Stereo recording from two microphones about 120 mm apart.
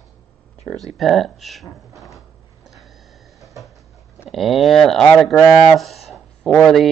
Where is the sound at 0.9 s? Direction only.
Centre (ahead or behind).